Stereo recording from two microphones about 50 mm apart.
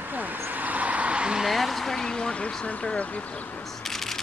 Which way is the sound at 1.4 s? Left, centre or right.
Centre.